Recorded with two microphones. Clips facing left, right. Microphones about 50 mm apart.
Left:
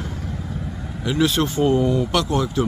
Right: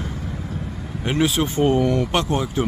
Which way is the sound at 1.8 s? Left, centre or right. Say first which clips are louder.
Even; right.